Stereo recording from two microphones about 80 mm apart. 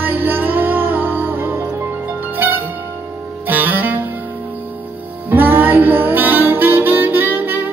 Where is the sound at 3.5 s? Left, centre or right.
Right.